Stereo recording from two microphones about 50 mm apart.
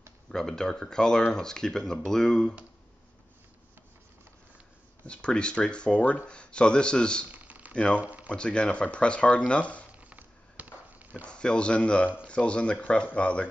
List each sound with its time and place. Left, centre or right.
0.3 s speech: centre
5.0 s speech: left
7.2 s typing: right
7.7 s speech: left
8.0 s speech: right
8.4 s speech: left
9.9 s a sound: right
11.2 s speech: centre